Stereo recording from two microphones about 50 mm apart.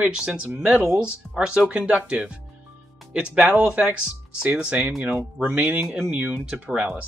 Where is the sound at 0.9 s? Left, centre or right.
Centre.